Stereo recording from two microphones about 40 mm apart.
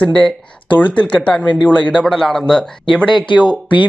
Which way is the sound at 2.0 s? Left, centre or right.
Centre.